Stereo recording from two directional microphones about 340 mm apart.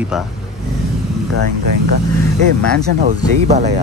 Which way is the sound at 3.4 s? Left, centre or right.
Centre.